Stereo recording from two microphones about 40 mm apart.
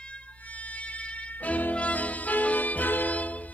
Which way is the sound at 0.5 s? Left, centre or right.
Left.